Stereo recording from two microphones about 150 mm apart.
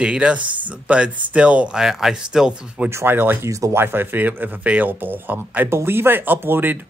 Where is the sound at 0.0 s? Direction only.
5° right (ahead or behind).